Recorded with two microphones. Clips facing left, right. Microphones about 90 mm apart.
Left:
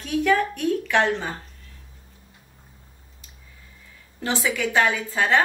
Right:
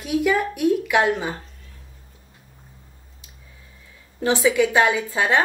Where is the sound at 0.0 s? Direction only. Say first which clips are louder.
Even; 10° right (ahead or behind).